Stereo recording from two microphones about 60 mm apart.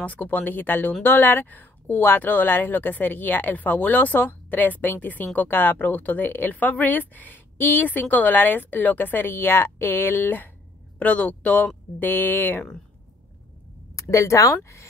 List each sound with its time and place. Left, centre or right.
0.0 s speech: left
13.9 s speech: left
14.6 s speech: left